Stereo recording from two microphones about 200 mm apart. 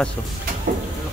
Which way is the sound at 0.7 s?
45° right (ahead or behind).